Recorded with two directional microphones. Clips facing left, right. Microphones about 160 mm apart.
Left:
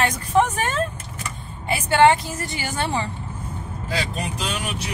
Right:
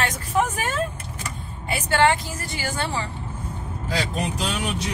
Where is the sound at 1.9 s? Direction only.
20° left (ahead or behind).